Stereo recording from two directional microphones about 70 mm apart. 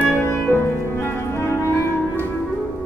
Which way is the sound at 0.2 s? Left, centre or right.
Left.